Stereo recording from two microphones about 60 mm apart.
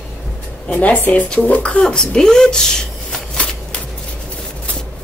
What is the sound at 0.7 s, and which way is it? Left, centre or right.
Speech, left.